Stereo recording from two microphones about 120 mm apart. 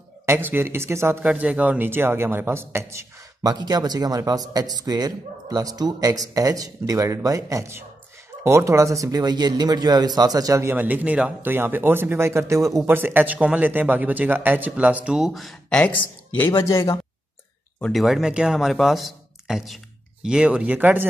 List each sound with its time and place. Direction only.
0.3 s speech: 15° right (ahead or behind)
1.2 s speech: 10° right (ahead or behind)
3.5 s speech: 35° right (ahead or behind)
10.7 s speech: 15° right (ahead or behind)
15.8 s speech: 15° left (ahead or behind)
17.9 s speech: centre (ahead or behind)